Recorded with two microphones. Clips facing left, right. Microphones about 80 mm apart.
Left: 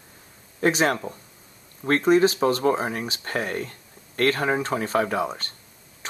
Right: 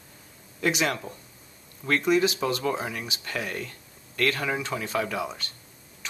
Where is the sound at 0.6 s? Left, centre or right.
Left.